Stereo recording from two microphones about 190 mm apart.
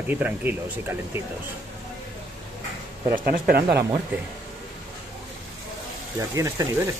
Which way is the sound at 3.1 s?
45° right (ahead or behind).